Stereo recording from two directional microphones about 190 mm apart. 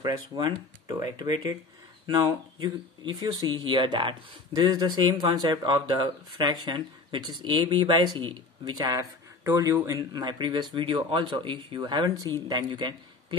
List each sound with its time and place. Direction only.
0.0 s speech: 20° right (ahead or behind)